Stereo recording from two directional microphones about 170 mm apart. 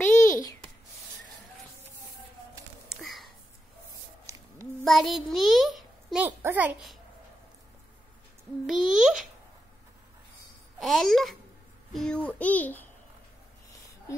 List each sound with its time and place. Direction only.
0.3 s a sound: 20° left (ahead or behind)
4.8 s a child's voice: centre (ahead or behind)
8.6 s a child's voice: centre (ahead or behind)
10.8 s a child's voice: centre (ahead or behind)